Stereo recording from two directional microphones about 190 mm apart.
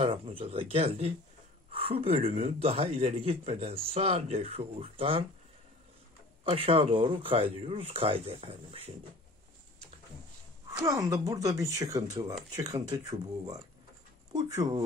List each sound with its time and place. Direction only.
0.0 s speech: 30° right (ahead or behind)
6.4 s speech: 30° right (ahead or behind)
10.8 s speech: 15° right (ahead or behind)
14.3 s speech: 20° right (ahead or behind)